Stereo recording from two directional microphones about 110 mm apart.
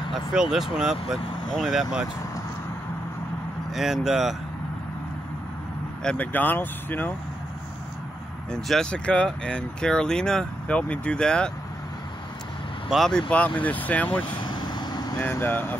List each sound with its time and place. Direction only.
0.1 s speech: 5° right (ahead or behind)
3.7 s speech: centre (ahead or behind)
6.0 s speech: 15° left (ahead or behind)
8.5 s speech: 5° left (ahead or behind)
12.9 s speech: 5° left (ahead or behind)
13.6 s speech: 15° left (ahead or behind)
14.4 s vehicle: 45° left (ahead or behind)
15.1 s speech: 20° left (ahead or behind)